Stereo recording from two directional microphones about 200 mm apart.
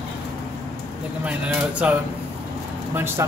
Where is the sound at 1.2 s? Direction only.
5° right (ahead or behind).